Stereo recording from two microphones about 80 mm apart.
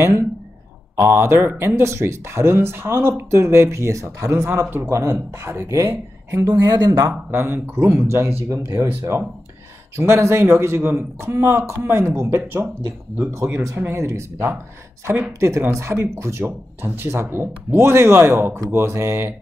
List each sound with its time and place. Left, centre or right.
0.9 s speech: right
6.7 s speech: right
9.9 s speech: right